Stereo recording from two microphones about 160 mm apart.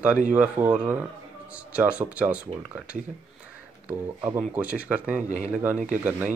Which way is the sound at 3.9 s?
15° right (ahead or behind).